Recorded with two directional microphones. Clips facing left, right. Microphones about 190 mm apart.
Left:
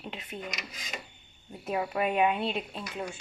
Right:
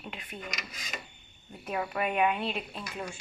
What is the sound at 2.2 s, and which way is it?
Speech, centre (ahead or behind).